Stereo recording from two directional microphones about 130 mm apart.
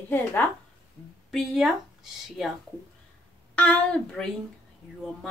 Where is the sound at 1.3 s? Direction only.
Centre (ahead or behind).